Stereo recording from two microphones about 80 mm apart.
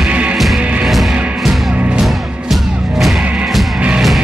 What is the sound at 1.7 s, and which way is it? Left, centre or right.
Music, centre.